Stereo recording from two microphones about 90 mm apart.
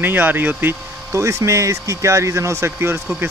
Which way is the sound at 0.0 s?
20° right (ahead or behind).